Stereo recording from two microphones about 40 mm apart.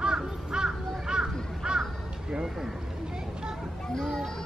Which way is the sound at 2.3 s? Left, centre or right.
Right.